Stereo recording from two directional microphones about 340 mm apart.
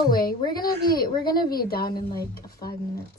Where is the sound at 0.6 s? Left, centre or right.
Left.